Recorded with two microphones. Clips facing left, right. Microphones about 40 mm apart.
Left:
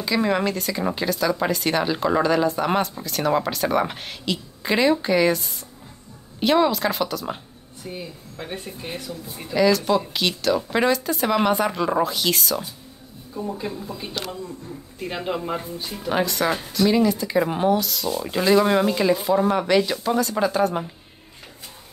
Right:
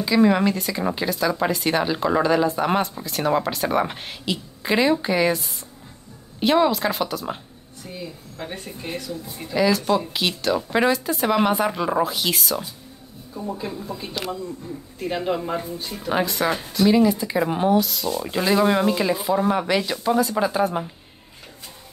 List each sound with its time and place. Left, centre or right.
0.0 s speech: centre
7.8 s a woman's voice: centre
8.4 s speech: centre